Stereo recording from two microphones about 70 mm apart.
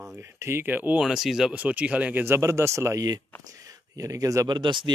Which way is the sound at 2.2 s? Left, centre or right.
Right.